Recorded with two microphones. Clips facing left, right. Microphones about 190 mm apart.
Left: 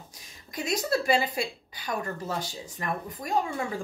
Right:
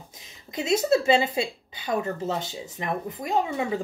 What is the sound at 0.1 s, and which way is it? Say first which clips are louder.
A woman's voice: right 5 dB; 25° right (ahead or behind).